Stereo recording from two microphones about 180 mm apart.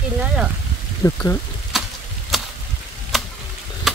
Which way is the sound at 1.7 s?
Centre (ahead or behind).